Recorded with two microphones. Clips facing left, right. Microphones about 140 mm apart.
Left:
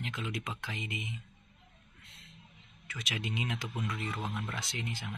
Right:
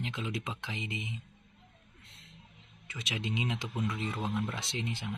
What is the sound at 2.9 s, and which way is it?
Speech, 25° right (ahead or behind).